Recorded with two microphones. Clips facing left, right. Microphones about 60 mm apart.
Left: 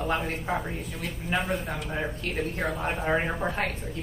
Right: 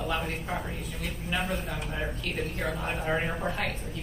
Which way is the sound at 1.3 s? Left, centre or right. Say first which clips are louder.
Left 3 dB; left.